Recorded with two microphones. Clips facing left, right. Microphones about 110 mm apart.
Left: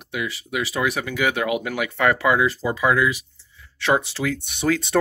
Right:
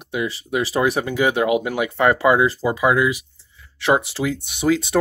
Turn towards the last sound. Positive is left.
turn(degrees=-15)  # may be behind; listen again after turning